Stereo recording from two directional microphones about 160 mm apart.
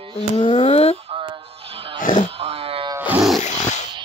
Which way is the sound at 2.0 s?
55° left (ahead or behind).